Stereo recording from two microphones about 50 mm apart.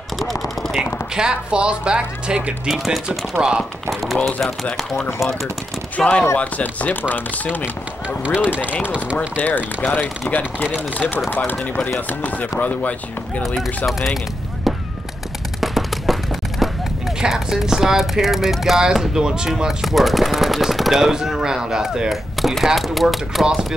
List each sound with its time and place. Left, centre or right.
0.2 s gunshot: centre
1.1 s speech: centre
2.7 s speech: centre
3.4 s speech: centre
3.9 s speech: centre
5.9 s speech: left
8.2 s speech: right
9.4 s speech: left
13.8 s speech: centre
15.6 s a sound: centre
17.2 s speech: centre
23.4 s speech: centre